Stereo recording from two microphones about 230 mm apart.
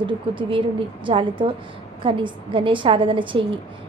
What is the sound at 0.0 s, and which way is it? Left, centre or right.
A woman's voice, right.